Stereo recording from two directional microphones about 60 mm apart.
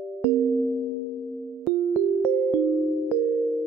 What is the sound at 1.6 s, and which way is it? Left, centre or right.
Music, centre.